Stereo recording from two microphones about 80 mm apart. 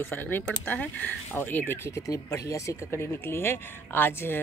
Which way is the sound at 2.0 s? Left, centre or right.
Left.